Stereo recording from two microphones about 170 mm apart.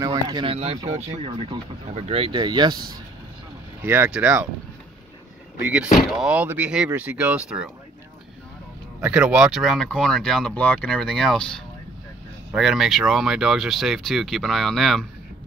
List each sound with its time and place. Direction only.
0.0 s a sound: 20° right (ahead or behind)
0.8 s speech: 40° right (ahead or behind); by 2.9 s 25° right (ahead or behind)
3.8 s speech: 10° right (ahead or behind)
6.1 s speech: 5° right (ahead or behind)
9.0 s speech: 5° right (ahead or behind)